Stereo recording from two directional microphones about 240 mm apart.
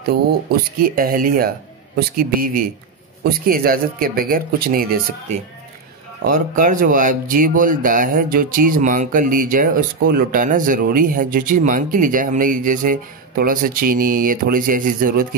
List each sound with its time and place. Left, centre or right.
0.1 s speech: right